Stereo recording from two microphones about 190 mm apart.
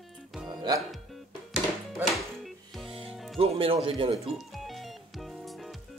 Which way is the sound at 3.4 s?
30° right (ahead or behind).